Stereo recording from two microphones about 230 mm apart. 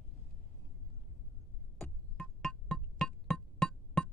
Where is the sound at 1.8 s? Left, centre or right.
Centre.